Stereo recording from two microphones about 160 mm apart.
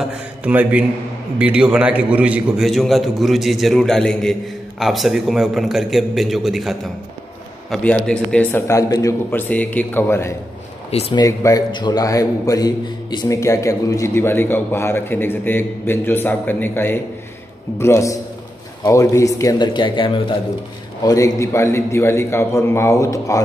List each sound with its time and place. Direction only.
0.0 s a man's voice: 10° right (ahead or behind); by 10.3 s 15° left (ahead or behind)
10.9 s speech: 40° left (ahead or behind)
11.1 s a man's voice: 20° left (ahead or behind)